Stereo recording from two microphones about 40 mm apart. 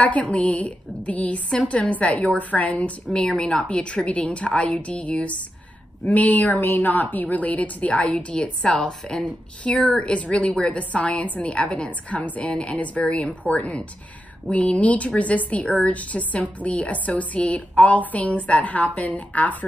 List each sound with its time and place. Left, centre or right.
0.0 s a woman's voice: left
3.1 s a woman's voice: left
8.6 s a woman's voice: centre
9.2 s a woman's voice: left